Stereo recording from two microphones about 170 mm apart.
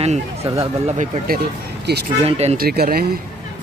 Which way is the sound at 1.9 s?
75° right (ahead or behind).